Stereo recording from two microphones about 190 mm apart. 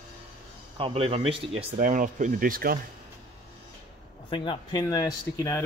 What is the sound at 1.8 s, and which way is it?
Speech, 45° right (ahead or behind).